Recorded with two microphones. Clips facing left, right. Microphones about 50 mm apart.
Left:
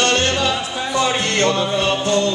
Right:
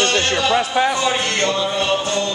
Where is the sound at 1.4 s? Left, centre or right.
Left.